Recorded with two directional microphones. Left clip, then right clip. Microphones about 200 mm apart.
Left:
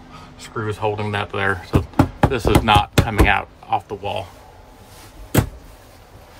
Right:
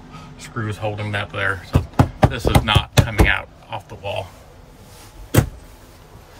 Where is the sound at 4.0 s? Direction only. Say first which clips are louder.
Left 1 dB; 15° left (ahead or behind).